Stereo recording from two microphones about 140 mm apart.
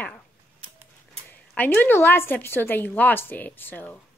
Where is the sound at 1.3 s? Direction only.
10° left (ahead or behind).